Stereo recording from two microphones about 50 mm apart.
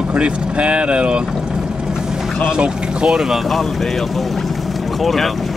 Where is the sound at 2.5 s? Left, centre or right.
Centre.